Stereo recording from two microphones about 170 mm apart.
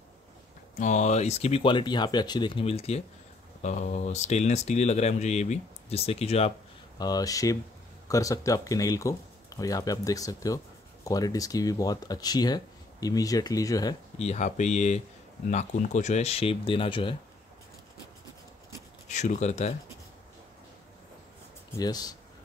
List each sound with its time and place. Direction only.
0.7 s speech: 45° left (ahead or behind)
7.0 s speech: 20° left (ahead or behind)
14.1 s speech: 40° left (ahead or behind)
19.0 s speech: 45° left (ahead or behind)
21.7 s speech: 20° left (ahead or behind)